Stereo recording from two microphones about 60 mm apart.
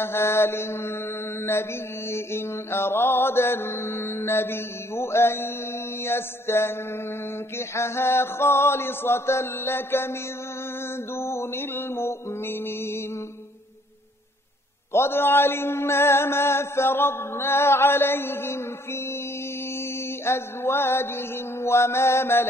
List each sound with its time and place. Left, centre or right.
0.0 s mantra: left
11.1 s mantra: left
14.9 s mantra: left
20.2 s mantra: left